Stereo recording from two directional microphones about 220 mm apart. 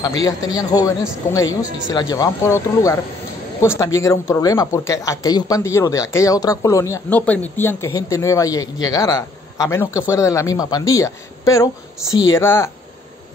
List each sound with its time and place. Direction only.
0.2 s speech: 15° left (ahead or behind)